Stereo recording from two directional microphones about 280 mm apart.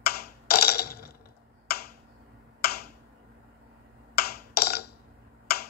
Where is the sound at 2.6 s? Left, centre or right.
Left.